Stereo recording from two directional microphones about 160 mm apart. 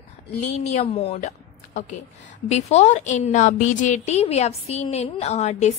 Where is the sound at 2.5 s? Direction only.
45° left (ahead or behind).